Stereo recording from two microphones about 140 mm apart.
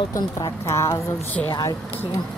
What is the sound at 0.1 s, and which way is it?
A woman's voice, 20° left (ahead or behind).